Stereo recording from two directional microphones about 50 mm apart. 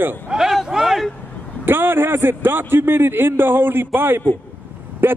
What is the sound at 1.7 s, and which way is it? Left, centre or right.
A man's voice, right.